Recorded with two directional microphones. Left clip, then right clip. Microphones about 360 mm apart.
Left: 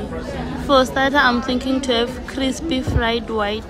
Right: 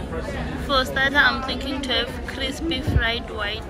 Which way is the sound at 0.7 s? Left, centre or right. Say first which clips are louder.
Left 5 dB; centre.